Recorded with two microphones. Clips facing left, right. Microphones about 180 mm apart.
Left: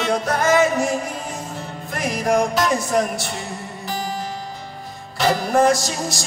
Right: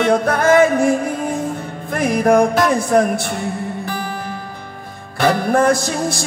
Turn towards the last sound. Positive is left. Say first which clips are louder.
# right 5 dB
turn(degrees=-55)  # may be behind; listen again after turning